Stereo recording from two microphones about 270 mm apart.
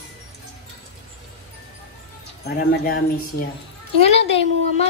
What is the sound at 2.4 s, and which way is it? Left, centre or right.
Speech, left.